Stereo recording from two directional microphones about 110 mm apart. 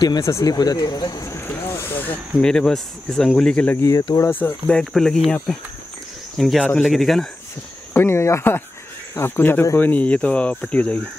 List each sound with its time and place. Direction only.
0.2 s speech: 30° left (ahead or behind)
1.3 s boat: 25° left (ahead or behind)
2.4 s speech: 5° left (ahead or behind)
3.7 s speech: 25° left (ahead or behind); by 7.2 s centre (ahead or behind)
7.9 s speech: 25° left (ahead or behind)